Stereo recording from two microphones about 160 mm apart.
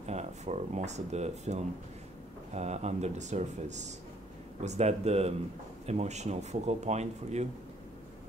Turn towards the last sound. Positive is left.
turn(degrees=-45)  # may be behind; listen again after turning